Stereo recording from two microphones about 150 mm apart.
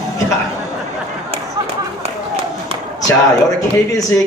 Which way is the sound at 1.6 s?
30° right (ahead or behind).